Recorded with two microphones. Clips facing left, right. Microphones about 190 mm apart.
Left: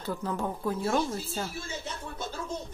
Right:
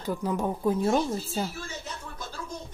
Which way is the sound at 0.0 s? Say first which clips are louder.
Right 3 dB; 15° right (ahead or behind).